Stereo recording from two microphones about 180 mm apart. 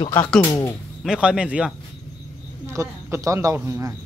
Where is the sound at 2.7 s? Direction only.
15° right (ahead or behind).